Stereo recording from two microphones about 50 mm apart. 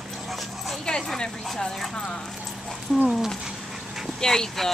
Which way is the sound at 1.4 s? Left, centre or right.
Centre.